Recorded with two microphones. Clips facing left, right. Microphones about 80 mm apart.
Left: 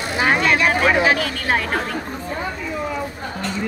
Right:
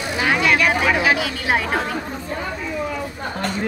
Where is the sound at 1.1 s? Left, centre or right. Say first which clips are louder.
Even; centre.